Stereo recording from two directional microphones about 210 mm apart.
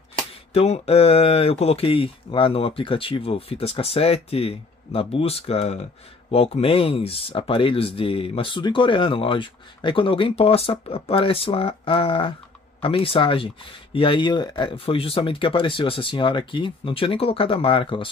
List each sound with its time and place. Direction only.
0.5 s speech: 30° left (ahead or behind)